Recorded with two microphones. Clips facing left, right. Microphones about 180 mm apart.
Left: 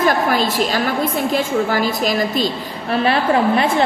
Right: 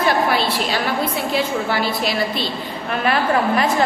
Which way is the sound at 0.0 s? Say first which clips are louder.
Left 2 dB; 45° left (ahead or behind).